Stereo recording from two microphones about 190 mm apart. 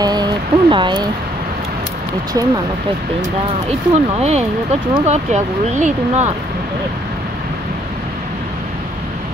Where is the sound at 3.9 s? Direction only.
35° right (ahead or behind).